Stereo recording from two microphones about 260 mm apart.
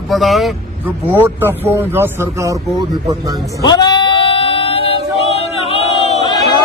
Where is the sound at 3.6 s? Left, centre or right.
Centre.